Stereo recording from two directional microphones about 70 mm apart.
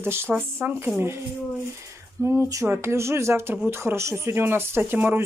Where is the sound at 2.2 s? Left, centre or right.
Right.